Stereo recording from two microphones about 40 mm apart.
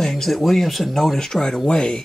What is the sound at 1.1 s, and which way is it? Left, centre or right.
Speech, centre.